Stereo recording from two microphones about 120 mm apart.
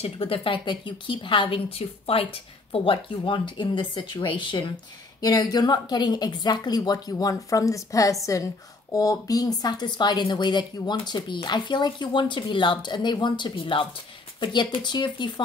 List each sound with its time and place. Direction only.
0.0 s a woman's voice: 50° left (ahead or behind)
5.2 s speech: 30° left (ahead or behind)